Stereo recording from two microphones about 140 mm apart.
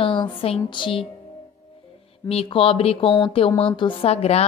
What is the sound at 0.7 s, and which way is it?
Speech, 35° left (ahead or behind).